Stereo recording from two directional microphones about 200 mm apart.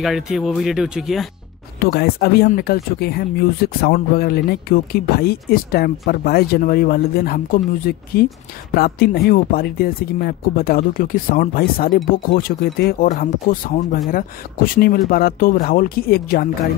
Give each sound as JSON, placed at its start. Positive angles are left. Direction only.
{"t": 0.0, "sound": "speech", "side_deg": 0}
{"t": 1.9, "sound": "speech", "side_deg": 50}